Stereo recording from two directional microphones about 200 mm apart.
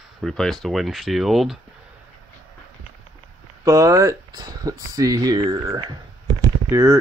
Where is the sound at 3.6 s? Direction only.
15° right (ahead or behind).